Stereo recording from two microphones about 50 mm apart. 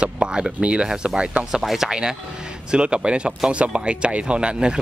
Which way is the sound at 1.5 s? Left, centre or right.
Centre.